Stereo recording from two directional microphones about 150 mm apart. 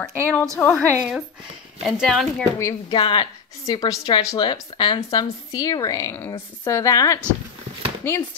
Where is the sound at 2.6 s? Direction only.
20° left (ahead or behind).